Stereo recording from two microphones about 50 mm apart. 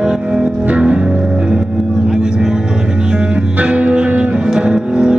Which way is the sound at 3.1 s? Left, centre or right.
Right.